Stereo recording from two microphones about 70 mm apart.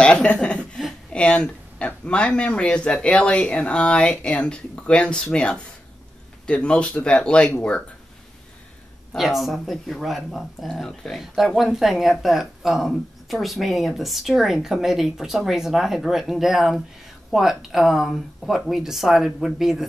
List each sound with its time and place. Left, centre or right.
0.0 s speech: centre
9.1 s speech: centre